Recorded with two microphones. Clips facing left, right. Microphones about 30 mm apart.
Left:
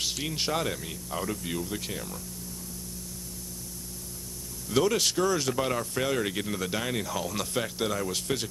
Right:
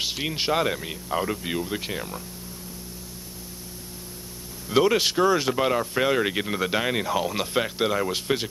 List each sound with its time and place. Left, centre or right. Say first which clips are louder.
0.0 s speech: right 4 dB; right
4.6 s speech: right 5 dB; right